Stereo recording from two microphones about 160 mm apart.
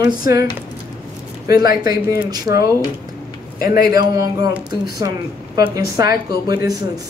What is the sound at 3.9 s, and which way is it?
Speech, 25° right (ahead or behind).